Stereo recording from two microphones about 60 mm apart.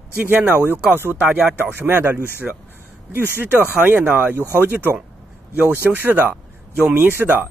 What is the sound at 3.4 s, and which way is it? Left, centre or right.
Speech, right.